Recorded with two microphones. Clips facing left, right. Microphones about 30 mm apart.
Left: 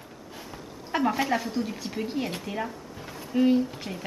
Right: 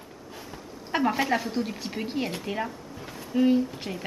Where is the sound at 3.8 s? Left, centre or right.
Centre.